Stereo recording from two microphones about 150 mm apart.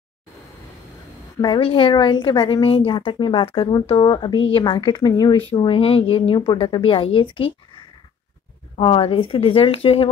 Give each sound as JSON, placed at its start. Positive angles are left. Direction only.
{"t": 1.4, "sound": "speech", "side_deg": 35}
{"t": 5.5, "sound": "speech", "side_deg": 40}
{"t": 8.7, "sound": "speech", "side_deg": 35}